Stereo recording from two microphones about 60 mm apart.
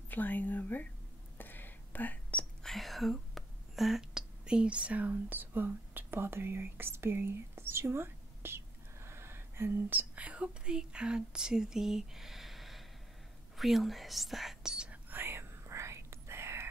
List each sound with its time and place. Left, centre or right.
0.1 s speech: left
1.4 s whispering: left
2.6 s speech: centre
14.9 s whispering: right